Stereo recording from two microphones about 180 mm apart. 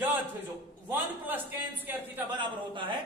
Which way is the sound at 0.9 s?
10° right (ahead or behind).